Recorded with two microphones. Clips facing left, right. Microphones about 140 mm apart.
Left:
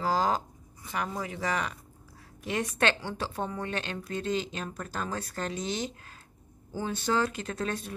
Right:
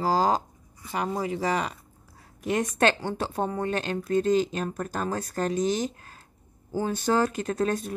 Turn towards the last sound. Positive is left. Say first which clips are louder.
# right 7 dB
turn(degrees=-40)  # may be behind; listen again after turning